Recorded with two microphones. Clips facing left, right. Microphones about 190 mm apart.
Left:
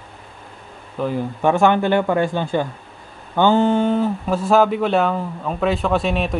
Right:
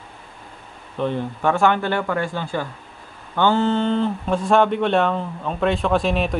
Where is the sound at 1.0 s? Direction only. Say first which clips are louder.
Left 1 dB; 5° left (ahead or behind).